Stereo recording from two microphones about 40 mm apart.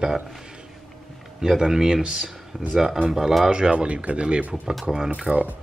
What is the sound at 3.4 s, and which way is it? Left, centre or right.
Speech, right.